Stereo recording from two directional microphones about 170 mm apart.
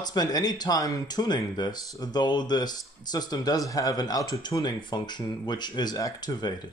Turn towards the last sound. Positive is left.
turn(degrees=25)  # may be behind; listen again after turning